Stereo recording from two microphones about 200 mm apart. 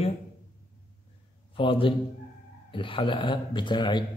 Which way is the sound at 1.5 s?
25° left (ahead or behind).